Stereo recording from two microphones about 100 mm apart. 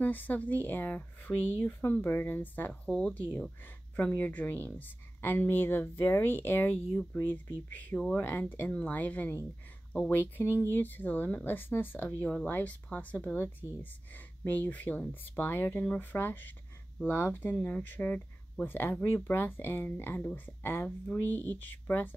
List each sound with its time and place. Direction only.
0.0 s speech: 20° left (ahead or behind)